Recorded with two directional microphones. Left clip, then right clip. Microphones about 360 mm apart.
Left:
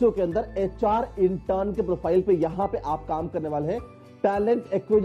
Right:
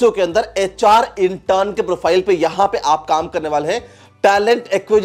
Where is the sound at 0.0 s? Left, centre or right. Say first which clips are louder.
Right 9 dB; centre.